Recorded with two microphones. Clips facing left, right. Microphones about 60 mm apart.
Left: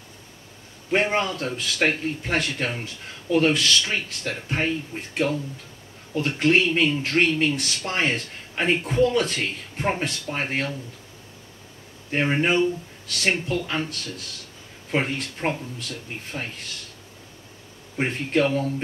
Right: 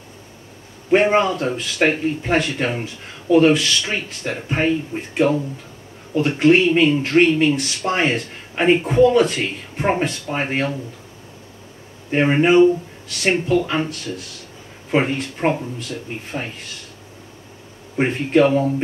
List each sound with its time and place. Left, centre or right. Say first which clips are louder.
0.9 s speech: right 7 dB; centre
6.4 s speech: right 6 dB; centre
12.1 s speech: right 7 dB; right
17.9 s speech: right 7 dB; right